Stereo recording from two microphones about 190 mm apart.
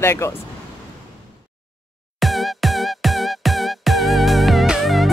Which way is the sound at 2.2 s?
Centre (ahead or behind).